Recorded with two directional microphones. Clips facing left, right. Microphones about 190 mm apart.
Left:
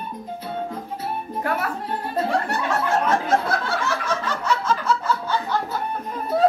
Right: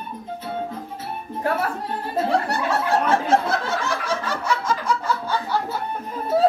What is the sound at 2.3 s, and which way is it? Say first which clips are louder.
Snicker: right 3 dB; 35° right (ahead or behind).